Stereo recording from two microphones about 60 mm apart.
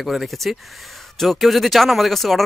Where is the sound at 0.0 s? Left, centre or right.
Centre.